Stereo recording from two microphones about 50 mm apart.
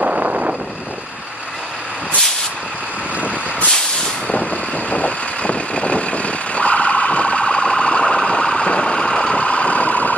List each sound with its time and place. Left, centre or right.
0.0 s vehicle: right
4.3 s vehicle: left